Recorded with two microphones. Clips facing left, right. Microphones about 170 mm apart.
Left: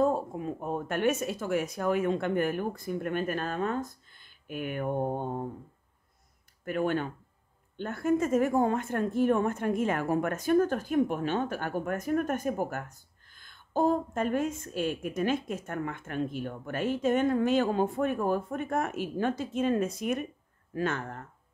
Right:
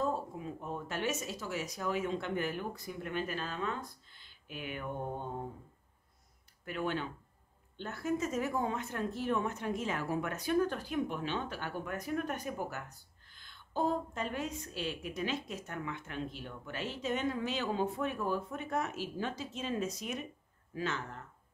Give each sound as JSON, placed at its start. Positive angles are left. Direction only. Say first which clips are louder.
{"t": 0.0, "sound": "speech", "louder": "left 8 dB", "side_deg": 55}
{"t": 6.6, "sound": "speech", "louder": "left 7 dB", "side_deg": 50}